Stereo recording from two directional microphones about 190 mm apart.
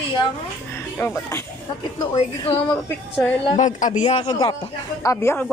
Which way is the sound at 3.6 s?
40° left (ahead or behind).